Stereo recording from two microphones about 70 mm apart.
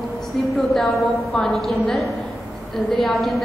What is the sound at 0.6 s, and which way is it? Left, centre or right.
A woman's voice, centre.